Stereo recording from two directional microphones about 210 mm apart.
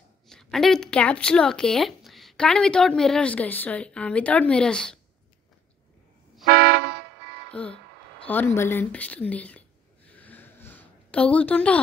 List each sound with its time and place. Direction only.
0.3 s speech: centre (ahead or behind)
6.4 s vehicle horn: 50° right (ahead or behind)
7.5 s speech: 5° left (ahead or behind)
8.5 s whispering: 10° left (ahead or behind)